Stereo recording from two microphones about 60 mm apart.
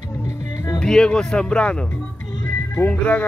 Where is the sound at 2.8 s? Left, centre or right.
Left.